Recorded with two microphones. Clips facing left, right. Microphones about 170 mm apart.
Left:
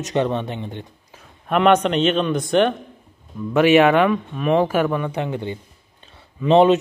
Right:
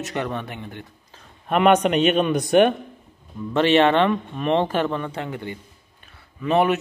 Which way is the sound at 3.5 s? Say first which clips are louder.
Left 3 dB; 10° left (ahead or behind).